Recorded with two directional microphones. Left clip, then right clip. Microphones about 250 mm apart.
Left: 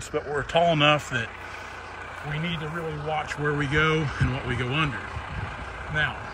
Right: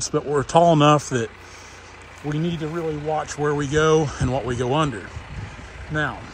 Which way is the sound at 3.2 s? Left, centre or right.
Centre.